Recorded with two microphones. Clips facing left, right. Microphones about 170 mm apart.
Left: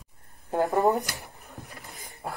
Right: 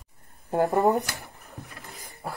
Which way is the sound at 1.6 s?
65° right (ahead or behind).